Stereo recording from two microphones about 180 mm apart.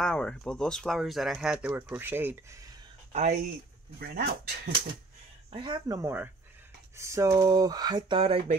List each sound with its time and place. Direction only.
0.0 s speech: 5° left (ahead or behind); by 2.6 s 10° right (ahead or behind)
3.1 s speech: 40° right (ahead or behind)
4.0 s speech: 65° right (ahead or behind)
5.5 s speech: 25° right (ahead or behind)